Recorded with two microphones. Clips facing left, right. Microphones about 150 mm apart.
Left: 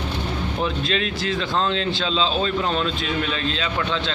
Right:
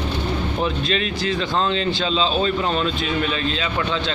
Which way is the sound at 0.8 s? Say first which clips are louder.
Right 1 dB; centre (ahead or behind).